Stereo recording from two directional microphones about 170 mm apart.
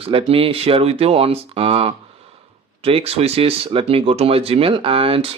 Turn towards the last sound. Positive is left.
turn(degrees=-35)  # may be behind; listen again after turning